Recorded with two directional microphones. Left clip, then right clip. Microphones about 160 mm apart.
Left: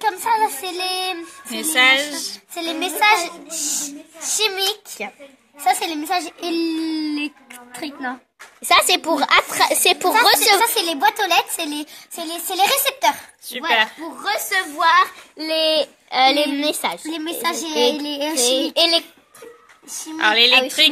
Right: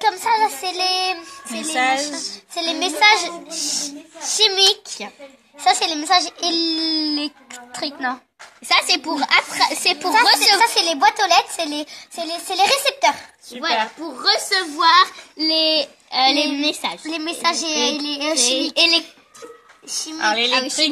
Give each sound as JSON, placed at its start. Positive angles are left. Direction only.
{"t": 0.0, "sound": "child singing", "side_deg": -30}
{"t": 1.6, "sound": "speech", "side_deg": 5}
{"t": 2.5, "sound": "a child's voice", "side_deg": -20}
{"t": 8.6, "sound": "speech", "side_deg": 40}
{"t": 10.6, "sound": "speech", "side_deg": -15}
{"t": 13.5, "sound": "speech", "side_deg": 5}
{"t": 14.2, "sound": "speech", "side_deg": 40}
{"t": 17.0, "sound": "speech", "side_deg": -15}
{"t": 18.4, "sound": "speech", "side_deg": 45}
{"t": 20.2, "sound": "a woman's voice", "side_deg": 5}